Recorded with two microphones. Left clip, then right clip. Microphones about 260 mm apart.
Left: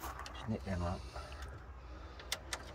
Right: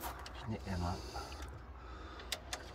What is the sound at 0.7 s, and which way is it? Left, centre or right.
Speech, centre.